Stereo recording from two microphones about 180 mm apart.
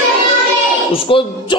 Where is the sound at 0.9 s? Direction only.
30° left (ahead or behind).